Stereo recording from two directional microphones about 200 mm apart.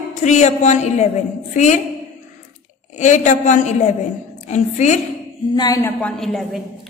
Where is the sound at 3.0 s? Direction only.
35° left (ahead or behind).